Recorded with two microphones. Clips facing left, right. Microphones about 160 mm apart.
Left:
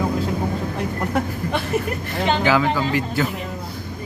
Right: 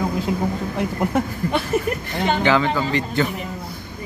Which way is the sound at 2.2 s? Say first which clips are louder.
Even; 5° left (ahead or behind).